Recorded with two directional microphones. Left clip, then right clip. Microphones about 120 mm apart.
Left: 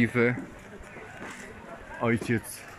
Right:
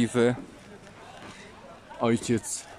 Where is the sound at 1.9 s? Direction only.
15° right (ahead or behind).